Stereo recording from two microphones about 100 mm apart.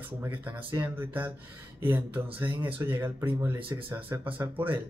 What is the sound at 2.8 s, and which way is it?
Speech, 25° right (ahead or behind).